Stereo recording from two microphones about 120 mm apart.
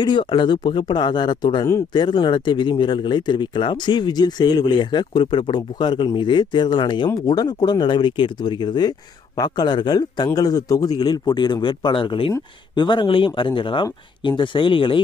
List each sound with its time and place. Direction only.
0.0 s speech: 40° left (ahead or behind)